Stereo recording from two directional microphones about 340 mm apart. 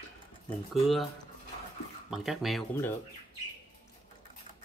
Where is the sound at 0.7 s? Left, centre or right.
Centre.